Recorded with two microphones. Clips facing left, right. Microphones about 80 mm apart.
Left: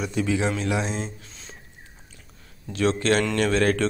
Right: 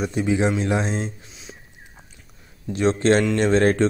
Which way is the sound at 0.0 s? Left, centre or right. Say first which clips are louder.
Right 3 dB; right.